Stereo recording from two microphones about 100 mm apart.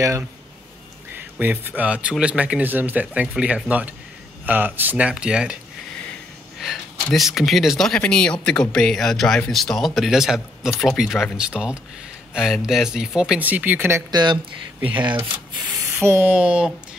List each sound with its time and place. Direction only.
1.4 s speech: 20° right (ahead or behind)
6.6 s speech: centre (ahead or behind)
13.4 s speech: 15° right (ahead or behind)
14.1 s speech: 50° right (ahead or behind)
15.7 s spray: 25° right (ahead or behind)
16.3 s speech: 10° right (ahead or behind)